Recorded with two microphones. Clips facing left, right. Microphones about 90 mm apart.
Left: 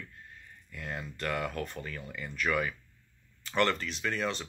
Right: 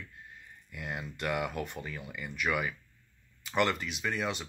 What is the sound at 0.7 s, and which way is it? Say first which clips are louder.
Speech: even; 15° right (ahead or behind).